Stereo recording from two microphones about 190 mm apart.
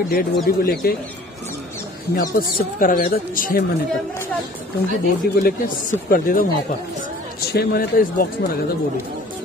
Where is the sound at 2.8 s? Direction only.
50° left (ahead or behind).